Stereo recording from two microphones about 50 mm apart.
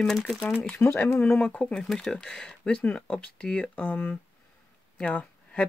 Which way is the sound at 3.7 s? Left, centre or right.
Left.